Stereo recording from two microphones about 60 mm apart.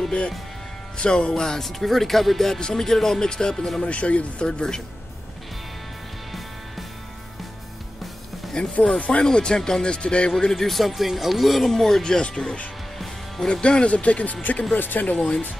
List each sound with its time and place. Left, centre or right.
0.9 s speech: centre
3.8 s speech: left
4.5 s speech: centre
8.5 s speech: centre
10.3 s speech: centre; by 15.1 s left
15.1 s speech: centre